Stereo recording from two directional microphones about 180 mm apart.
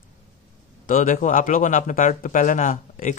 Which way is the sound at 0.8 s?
45° left (ahead or behind).